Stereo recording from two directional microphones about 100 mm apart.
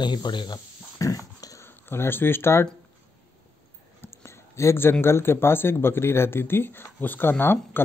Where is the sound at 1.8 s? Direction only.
20° left (ahead or behind).